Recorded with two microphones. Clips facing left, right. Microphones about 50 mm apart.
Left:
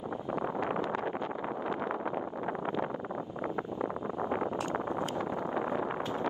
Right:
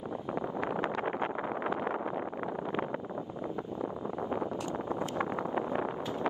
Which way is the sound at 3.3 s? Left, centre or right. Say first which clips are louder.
Left 3 dB; left.